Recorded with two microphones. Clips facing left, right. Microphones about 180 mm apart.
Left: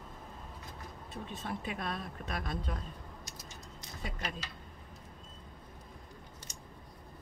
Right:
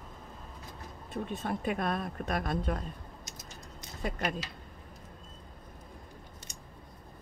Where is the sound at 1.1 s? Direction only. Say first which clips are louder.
Right 6 dB; 55° right (ahead or behind).